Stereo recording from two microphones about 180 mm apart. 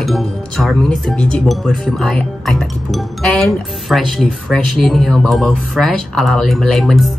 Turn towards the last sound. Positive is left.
turn(degrees=0)  # may be behind; listen again after turning